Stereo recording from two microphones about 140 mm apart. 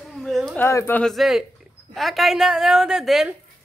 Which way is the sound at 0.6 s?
15° left (ahead or behind).